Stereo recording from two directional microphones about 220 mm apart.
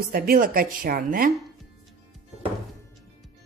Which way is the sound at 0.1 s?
40° right (ahead or behind).